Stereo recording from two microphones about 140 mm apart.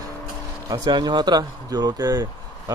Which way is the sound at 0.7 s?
30° right (ahead or behind).